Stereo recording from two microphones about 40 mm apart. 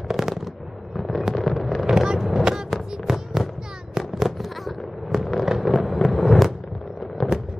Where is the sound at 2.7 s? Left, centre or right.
Centre.